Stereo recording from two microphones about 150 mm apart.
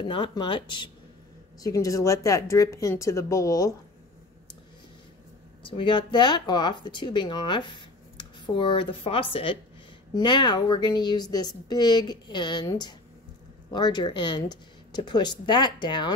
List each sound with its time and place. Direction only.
0.0 s a woman's voice: 30° left (ahead or behind)
5.7 s a woman's voice: 30° left (ahead or behind)